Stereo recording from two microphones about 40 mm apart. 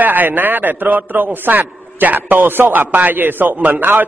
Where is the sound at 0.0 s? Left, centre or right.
Right.